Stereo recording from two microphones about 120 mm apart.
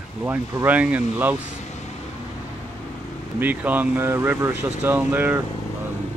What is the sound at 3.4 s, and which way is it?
Speech, 15° right (ahead or behind).